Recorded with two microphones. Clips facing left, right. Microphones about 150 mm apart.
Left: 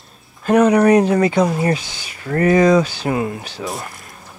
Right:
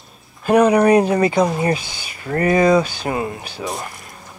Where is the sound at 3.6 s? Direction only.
Centre (ahead or behind).